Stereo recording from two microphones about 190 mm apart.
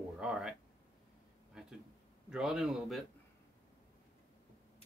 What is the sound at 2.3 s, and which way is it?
Speech, 5° right (ahead or behind).